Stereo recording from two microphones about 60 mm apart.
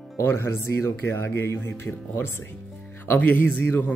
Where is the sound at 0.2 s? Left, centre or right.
Left.